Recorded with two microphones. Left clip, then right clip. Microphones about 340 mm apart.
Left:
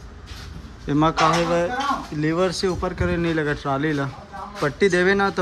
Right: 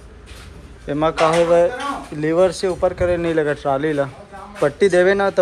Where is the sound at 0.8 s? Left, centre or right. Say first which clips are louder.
Right 2 dB; centre.